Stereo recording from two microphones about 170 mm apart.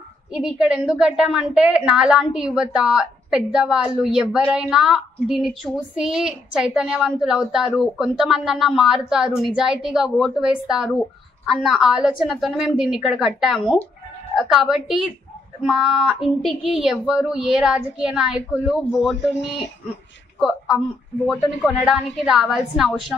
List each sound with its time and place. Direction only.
0.3 s a woman's voice: 5° right (ahead or behind)